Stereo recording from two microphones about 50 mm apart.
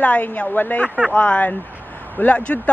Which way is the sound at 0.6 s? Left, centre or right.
Left.